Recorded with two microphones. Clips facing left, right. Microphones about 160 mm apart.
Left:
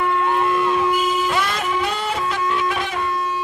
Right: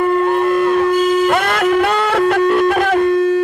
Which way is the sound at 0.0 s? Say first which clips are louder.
Right 6 dB; 45° right (ahead or behind).